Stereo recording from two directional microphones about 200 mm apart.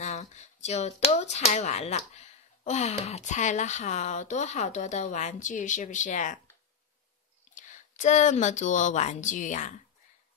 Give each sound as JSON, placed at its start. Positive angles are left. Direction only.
{"t": 0.0, "sound": "speech", "side_deg": 35}
{"t": 7.5, "sound": "a woman's voice", "side_deg": 40}